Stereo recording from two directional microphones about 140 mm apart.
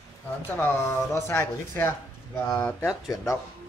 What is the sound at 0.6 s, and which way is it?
Speech, 15° left (ahead or behind).